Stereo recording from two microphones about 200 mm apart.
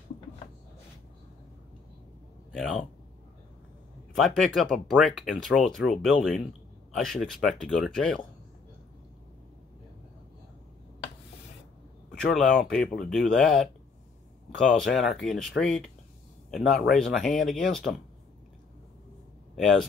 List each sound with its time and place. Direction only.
2.5 s a man's voice: centre (ahead or behind)
4.6 s speech: centre (ahead or behind)
12.1 s speech: 5° left (ahead or behind)
19.5 s speech: centre (ahead or behind)